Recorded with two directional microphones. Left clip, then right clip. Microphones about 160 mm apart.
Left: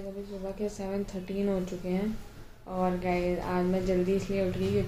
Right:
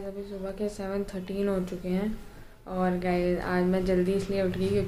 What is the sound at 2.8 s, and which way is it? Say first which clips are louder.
Speech: right 2 dB; 10° right (ahead or behind).